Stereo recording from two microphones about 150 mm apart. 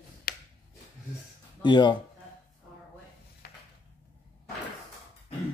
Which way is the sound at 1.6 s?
30° left (ahead or behind).